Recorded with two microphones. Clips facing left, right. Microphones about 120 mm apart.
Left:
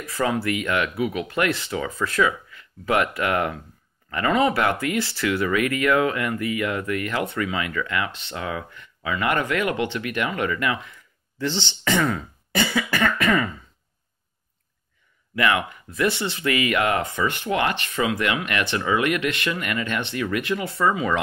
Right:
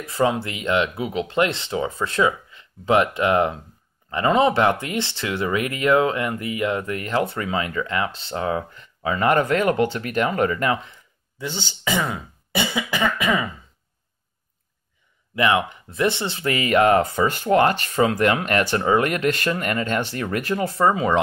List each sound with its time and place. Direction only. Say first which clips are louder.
0.0 s speech: right 2 dB; 25° right (ahead or behind)
11.3 s speech: left 4 dB; 10° right (ahead or behind)
15.3 s speech: right 2 dB; 25° right (ahead or behind)